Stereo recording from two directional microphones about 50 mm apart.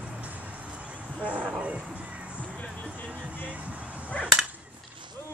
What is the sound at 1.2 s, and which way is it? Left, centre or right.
Speech, right.